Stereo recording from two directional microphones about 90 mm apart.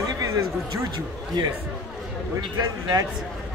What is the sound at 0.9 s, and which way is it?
Speech, 55° right (ahead or behind).